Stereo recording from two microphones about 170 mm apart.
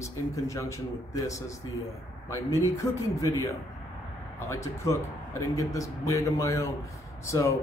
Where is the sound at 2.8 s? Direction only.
20° left (ahead or behind).